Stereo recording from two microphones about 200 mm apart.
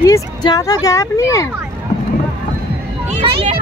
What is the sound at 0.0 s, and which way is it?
Speech, 20° left (ahead or behind).